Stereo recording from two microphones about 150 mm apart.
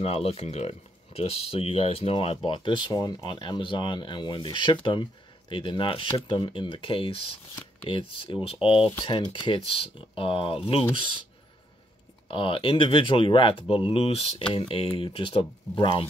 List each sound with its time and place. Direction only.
0.0 s speech: 40° left (ahead or behind)
12.3 s speech: 35° left (ahead or behind)